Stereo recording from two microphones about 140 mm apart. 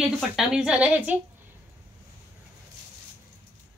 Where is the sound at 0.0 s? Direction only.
5° right (ahead or behind).